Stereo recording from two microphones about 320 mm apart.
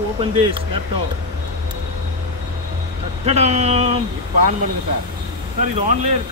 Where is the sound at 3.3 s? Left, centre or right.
Right.